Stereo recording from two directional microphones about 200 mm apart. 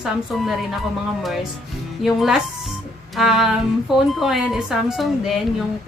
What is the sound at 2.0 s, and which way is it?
A woman's voice, centre (ahead or behind).